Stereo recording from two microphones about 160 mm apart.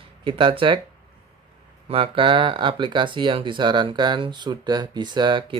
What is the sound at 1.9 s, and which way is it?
Speech, 35° right (ahead or behind).